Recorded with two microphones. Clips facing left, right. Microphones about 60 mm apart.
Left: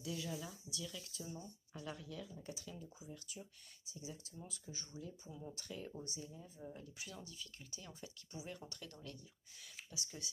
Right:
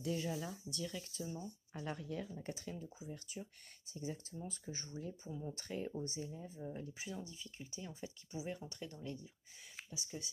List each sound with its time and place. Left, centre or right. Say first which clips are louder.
0.0 s speech: right 5 dB; right